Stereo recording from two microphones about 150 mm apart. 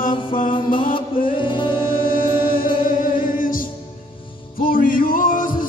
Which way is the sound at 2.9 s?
65° left (ahead or behind).